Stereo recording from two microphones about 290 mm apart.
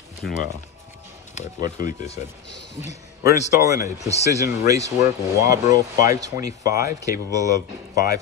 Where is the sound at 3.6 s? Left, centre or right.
Centre.